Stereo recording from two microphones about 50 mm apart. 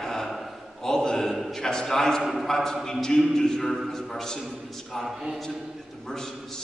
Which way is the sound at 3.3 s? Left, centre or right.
Centre.